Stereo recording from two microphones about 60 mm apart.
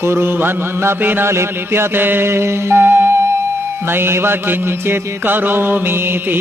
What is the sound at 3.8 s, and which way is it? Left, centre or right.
Chant, right.